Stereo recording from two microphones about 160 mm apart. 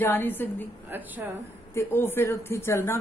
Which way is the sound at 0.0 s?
10° left (ahead or behind).